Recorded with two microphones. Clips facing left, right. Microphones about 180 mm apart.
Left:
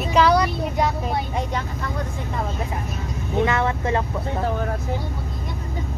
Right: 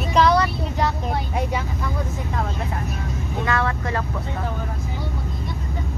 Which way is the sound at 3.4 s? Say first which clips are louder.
Even; 20° left (ahead or behind).